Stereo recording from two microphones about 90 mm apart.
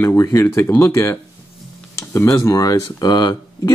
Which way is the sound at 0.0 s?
35° left (ahead or behind).